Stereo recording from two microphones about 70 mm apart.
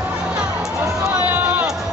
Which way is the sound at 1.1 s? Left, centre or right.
Right.